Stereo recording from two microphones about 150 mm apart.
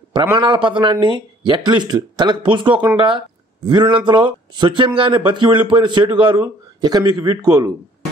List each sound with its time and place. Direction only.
0.3 s speech: 30° right (ahead or behind)